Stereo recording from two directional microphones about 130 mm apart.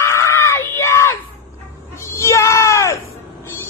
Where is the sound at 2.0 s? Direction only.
20° left (ahead or behind).